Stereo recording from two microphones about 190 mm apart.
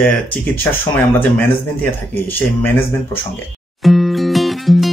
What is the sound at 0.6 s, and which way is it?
Speech, 10° left (ahead or behind).